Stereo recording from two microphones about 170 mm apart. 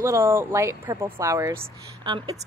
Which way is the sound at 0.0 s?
15° right (ahead or behind).